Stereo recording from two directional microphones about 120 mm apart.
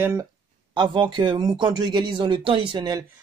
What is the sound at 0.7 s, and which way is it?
Speech, 45° right (ahead or behind).